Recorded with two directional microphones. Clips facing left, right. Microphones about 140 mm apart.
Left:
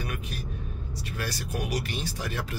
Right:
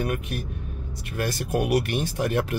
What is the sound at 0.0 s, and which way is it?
Speech, 55° right (ahead or behind).